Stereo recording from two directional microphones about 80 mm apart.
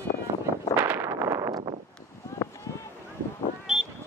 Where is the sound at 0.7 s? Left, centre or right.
Right.